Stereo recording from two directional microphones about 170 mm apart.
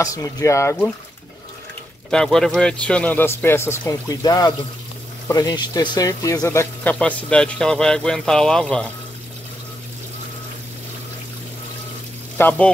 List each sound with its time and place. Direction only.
0.0 s speech: 20° left (ahead or behind)
2.0 s speech: 5° left (ahead or behind)
12.4 s speech: 10° left (ahead or behind)